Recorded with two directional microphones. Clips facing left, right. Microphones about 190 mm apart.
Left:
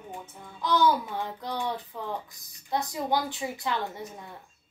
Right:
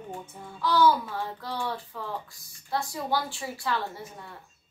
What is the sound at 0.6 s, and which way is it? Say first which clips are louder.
A child's voice: right 1 dB; 20° left (ahead or behind).